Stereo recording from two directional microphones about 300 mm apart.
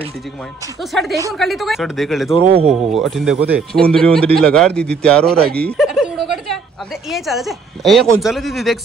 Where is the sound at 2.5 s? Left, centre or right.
Centre.